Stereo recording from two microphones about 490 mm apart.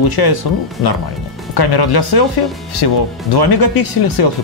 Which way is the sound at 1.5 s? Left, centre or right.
Left.